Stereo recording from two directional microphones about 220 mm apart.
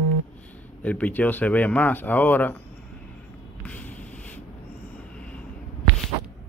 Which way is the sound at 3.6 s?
5° left (ahead or behind).